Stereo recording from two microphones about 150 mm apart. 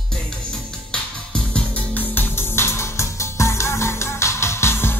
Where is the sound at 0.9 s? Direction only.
5° left (ahead or behind).